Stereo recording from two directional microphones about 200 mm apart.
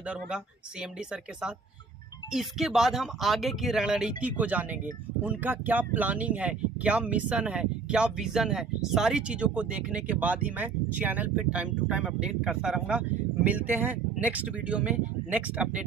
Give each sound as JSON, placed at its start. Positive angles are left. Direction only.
{"t": 2.3, "sound": "speech", "side_deg": 0}